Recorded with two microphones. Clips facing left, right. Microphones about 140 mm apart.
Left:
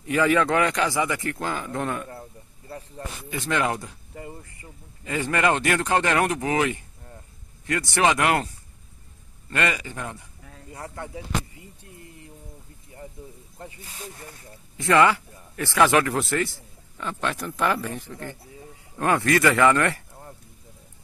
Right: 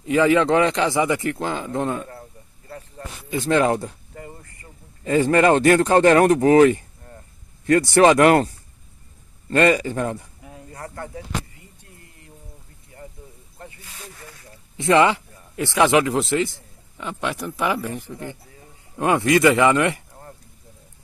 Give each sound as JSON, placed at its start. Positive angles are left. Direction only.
{"t": 0.0, "sound": "a man's voice", "side_deg": -25}
{"t": 3.3, "sound": "speech", "side_deg": -35}
{"t": 4.1, "sound": "a sound", "side_deg": 15}
{"t": 5.0, "sound": "speech", "side_deg": -35}
{"t": 9.5, "sound": "speech", "side_deg": -35}
{"t": 10.7, "sound": "speech", "side_deg": 10}
{"t": 13.7, "sound": "snake", "side_deg": 40}
{"t": 14.8, "sound": "a man's voice", "side_deg": -20}